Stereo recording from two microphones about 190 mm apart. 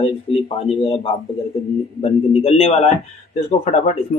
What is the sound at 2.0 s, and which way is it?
Speech, 30° left (ahead or behind).